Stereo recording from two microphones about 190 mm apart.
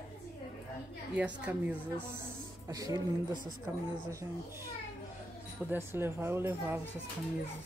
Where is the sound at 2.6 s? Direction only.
20° right (ahead or behind).